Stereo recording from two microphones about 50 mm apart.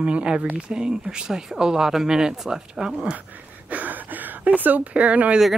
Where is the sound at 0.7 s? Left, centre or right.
Centre.